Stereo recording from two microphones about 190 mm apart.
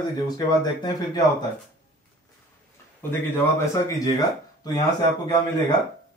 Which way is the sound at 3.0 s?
15° left (ahead or behind).